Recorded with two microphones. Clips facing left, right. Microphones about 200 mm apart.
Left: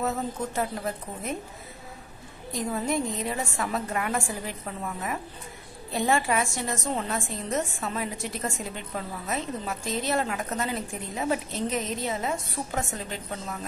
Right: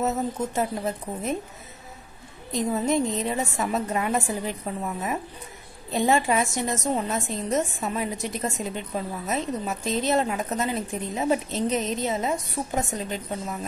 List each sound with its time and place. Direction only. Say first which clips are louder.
0.6 s a woman's voice: right 2 dB; 20° right (ahead or behind)
2.5 s a woman's voice: right 4 dB; 20° right (ahead or behind)